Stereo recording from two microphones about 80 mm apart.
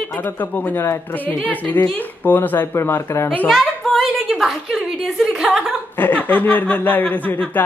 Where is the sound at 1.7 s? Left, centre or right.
Left.